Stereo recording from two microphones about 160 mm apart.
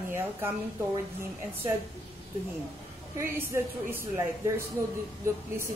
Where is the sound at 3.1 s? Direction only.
15° right (ahead or behind).